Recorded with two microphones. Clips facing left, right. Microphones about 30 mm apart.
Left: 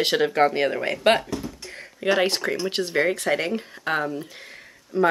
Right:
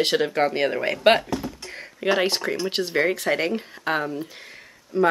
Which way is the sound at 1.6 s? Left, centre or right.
Centre.